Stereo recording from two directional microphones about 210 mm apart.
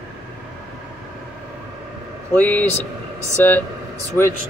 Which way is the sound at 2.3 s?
5° left (ahead or behind).